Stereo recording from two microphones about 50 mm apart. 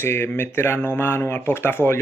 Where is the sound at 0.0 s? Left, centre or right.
Left.